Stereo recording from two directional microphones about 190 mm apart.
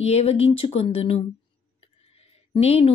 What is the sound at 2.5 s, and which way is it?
Speech, 30° left (ahead or behind).